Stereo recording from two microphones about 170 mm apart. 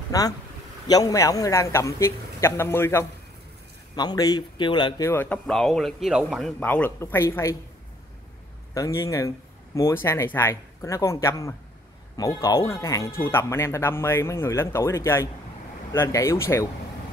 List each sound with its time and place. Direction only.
0.1 s speech: 20° left (ahead or behind)
3.9 s speech: 25° left (ahead or behind); by 6.5 s centre (ahead or behind)
6.6 s speech: 10° left (ahead or behind)
8.7 s speech: 20° left (ahead or behind)